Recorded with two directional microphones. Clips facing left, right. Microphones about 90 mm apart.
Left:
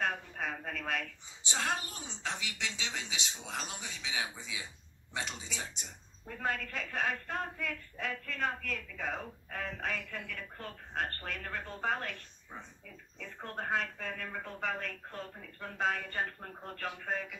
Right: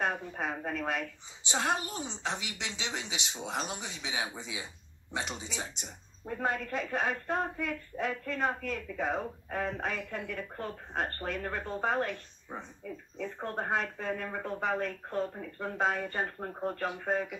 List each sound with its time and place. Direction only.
0.0 s a woman's voice: 25° right (ahead or behind)